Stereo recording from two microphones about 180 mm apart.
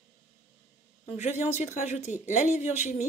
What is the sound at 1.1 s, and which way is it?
Speech, 40° left (ahead or behind).